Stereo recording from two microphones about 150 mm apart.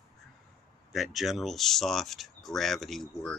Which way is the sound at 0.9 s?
Centre (ahead or behind).